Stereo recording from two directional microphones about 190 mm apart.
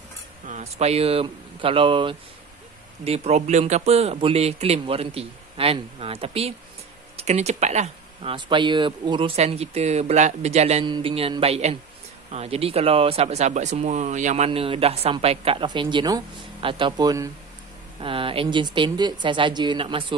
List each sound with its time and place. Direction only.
0.5 s speech: 35° right (ahead or behind)